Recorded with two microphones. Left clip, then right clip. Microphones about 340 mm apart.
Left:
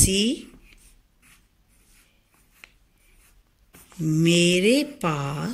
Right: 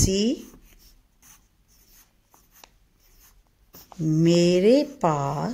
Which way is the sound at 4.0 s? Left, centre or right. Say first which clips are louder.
Even; right.